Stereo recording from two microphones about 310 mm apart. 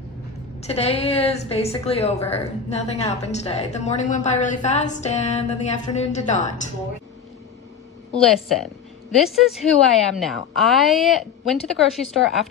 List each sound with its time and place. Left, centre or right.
0.6 s a woman's voice: centre
8.1 s a woman's voice: centre